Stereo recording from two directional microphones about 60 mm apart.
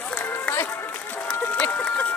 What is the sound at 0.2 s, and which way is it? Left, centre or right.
Run, left.